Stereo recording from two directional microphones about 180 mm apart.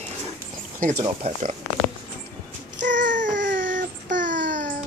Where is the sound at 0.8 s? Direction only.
50° right (ahead or behind).